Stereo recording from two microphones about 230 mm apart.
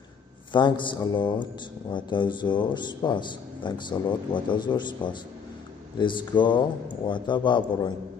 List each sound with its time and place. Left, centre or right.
0.5 s speech: left